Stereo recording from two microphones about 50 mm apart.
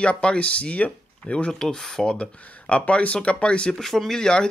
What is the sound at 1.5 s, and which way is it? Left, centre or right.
Speech, centre.